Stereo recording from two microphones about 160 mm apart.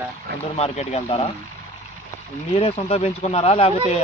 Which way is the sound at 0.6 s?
40° left (ahead or behind).